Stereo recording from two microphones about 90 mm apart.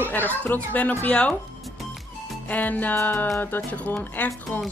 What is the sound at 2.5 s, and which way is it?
Speech, 20° left (ahead or behind).